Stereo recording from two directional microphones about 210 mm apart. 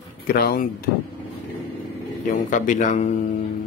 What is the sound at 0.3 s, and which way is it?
Speech, 45° left (ahead or behind).